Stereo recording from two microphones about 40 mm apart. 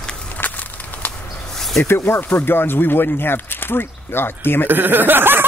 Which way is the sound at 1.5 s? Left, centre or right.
Centre.